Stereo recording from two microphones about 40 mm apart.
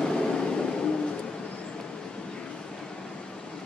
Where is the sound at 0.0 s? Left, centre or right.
Centre.